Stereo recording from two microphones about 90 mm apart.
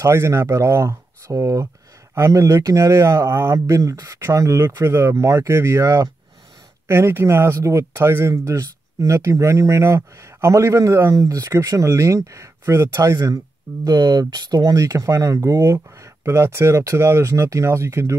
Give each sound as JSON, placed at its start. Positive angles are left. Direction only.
{"t": 0.0, "sound": "speech", "side_deg": -30}
{"t": 13.8, "sound": "speech", "side_deg": -50}